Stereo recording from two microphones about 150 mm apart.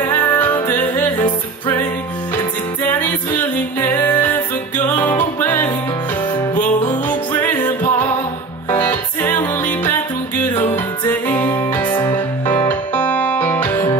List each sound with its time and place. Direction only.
0.0 s music: 15° left (ahead or behind)
3.8 s music: 15° left (ahead or behind)
7.1 s music: 10° left (ahead or behind)
11.9 s music: 25° left (ahead or behind)
12.6 s music: 10° left (ahead or behind)